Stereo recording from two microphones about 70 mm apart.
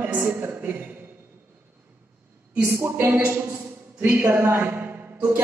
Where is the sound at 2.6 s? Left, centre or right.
Right.